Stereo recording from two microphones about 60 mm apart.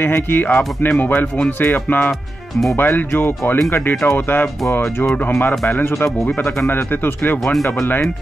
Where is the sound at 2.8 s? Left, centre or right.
Left.